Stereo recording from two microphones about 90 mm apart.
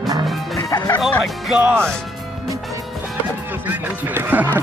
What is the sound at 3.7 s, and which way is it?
Music, 20° right (ahead or behind).